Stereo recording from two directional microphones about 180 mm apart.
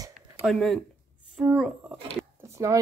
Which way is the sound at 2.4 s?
15° right (ahead or behind).